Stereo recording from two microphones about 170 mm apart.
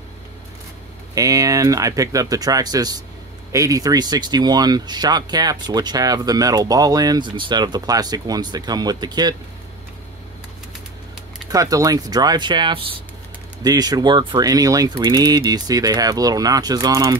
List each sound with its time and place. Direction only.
1.1 s speech: 20° right (ahead or behind)
11.4 s speech: 20° right (ahead or behind)